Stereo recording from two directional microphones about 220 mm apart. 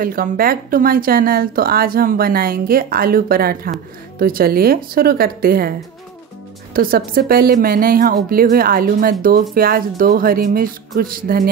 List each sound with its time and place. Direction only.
0.0 s a woman's voice: 40° right (ahead or behind)